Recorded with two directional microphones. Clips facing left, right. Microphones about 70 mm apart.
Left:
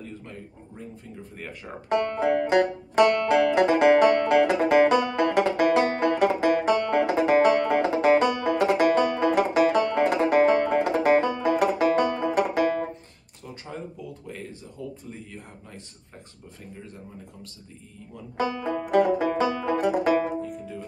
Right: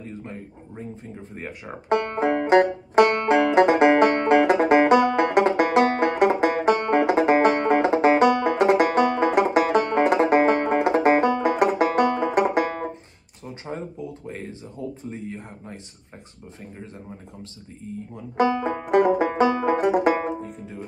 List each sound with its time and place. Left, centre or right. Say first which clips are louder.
0.0 s a sound: right 3 dB; right
1.3 s speech: right 3 dB; right
3.3 s banjo: right 3 dB; right
9.0 s banjo: right 3 dB; right
9.3 s banjo: right 1 dB; right
9.8 s banjo: right 3 dB; right
13.7 s a sound: right 5 dB; right
18.1 s banjo: right 6 dB; right